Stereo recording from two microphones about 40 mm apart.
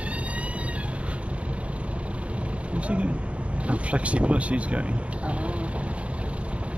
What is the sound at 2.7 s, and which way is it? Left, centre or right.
Vehicle, right.